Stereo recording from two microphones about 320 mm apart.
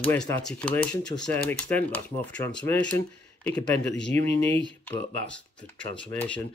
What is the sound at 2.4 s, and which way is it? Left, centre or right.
Speech, centre.